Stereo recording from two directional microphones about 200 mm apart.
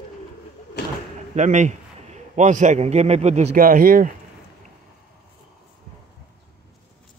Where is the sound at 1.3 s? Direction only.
35° right (ahead or behind).